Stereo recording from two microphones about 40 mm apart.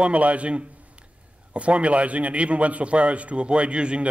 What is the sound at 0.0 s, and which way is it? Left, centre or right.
A man's voice, right.